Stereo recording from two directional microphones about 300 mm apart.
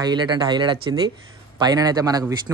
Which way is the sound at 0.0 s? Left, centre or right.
Centre.